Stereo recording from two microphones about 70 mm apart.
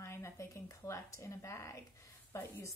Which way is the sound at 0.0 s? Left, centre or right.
Left.